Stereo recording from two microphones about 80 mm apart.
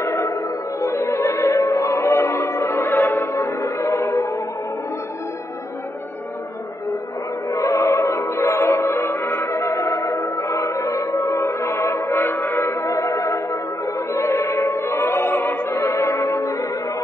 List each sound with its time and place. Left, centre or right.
0.0 s music: left
7.4 s music: left